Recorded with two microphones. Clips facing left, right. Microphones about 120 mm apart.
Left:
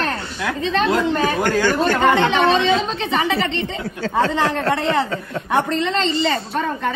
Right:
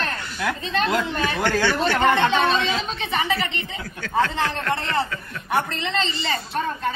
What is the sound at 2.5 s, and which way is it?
Speech, 25° left (ahead or behind).